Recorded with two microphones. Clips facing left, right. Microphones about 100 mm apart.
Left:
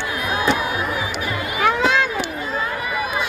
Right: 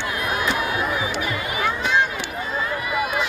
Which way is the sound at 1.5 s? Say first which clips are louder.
Left 4 dB; 90° left.